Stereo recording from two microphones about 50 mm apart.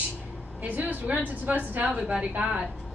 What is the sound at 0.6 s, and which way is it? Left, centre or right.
A woman's voice, right.